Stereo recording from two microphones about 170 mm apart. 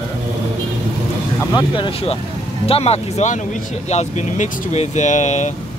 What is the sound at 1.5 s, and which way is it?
Speech, 30° left (ahead or behind).